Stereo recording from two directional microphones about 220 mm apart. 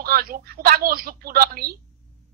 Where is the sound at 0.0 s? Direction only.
40° right (ahead or behind).